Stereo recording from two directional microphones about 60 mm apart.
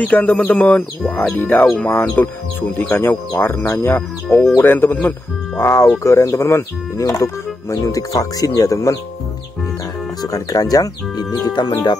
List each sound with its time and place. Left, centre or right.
0.0 s speech: left
5.6 s speech: left
6.0 s speech: left
10.2 s speech: left